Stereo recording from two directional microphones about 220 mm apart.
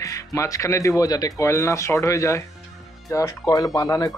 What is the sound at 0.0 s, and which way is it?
Speech, 15° left (ahead or behind).